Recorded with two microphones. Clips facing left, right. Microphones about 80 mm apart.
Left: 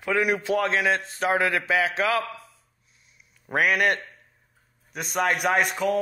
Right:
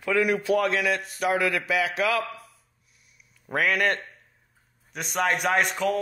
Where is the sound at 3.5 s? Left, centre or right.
Centre.